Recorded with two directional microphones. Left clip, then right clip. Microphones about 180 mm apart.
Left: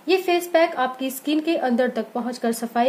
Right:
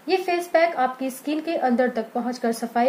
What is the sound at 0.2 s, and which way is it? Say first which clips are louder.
Speech: left 1 dB; 20° left (ahead or behind).